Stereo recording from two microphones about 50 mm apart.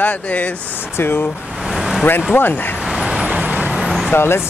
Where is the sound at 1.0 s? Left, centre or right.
Left.